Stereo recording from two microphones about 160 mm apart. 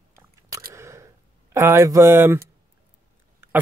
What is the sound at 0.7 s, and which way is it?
Single-lens reflex camera, 15° right (ahead or behind).